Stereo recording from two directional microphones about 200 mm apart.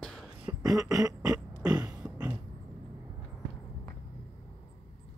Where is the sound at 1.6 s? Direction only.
5° right (ahead or behind).